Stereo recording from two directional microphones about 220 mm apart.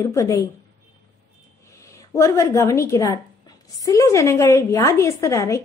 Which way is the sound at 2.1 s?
15° left (ahead or behind).